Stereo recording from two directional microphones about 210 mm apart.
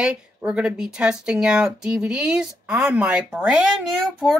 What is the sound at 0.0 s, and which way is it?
Speech, 5° right (ahead or behind).